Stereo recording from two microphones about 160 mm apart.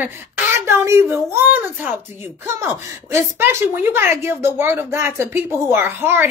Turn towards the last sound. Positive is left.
turn(degrees=-15)  # may be behind; listen again after turning